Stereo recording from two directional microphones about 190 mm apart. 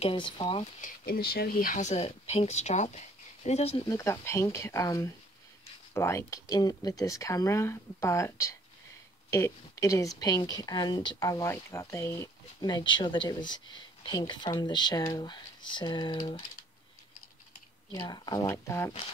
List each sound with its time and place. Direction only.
0.0 s speech: 25° left (ahead or behind)
0.7 s speech: 45° left (ahead or behind)
3.8 s speech: 15° left (ahead or behind)
17.9 s speech: 20° left (ahead or behind)